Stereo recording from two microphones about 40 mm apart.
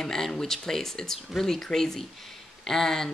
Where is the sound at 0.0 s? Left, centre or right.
Centre.